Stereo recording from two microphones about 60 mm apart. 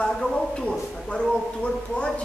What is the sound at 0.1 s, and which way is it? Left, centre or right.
A man's voice, centre.